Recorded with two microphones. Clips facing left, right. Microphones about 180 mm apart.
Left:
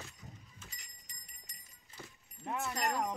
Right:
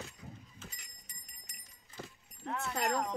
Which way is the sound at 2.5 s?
15° left (ahead or behind).